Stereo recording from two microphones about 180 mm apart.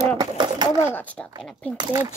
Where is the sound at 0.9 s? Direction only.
10° left (ahead or behind).